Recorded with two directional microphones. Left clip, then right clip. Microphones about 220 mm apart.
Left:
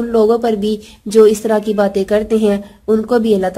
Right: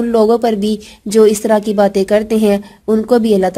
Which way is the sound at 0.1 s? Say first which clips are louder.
Right 1 dB; 35° right (ahead or behind).